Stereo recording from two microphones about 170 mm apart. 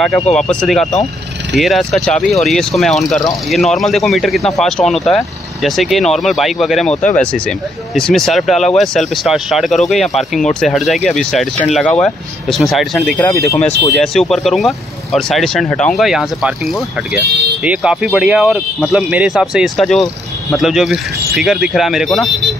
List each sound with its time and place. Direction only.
0.0 s speech: 5° left (ahead or behind)
13.3 s speech: 15° left (ahead or behind)
13.9 s speech: centre (ahead or behind)